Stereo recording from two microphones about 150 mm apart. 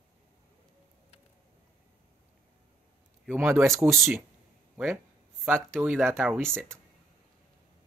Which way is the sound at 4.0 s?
Centre (ahead or behind).